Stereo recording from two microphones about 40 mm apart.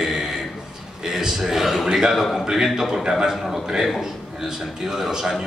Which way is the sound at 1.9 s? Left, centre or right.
Centre.